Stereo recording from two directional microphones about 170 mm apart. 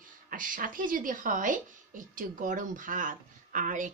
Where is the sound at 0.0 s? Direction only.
55° right (ahead or behind).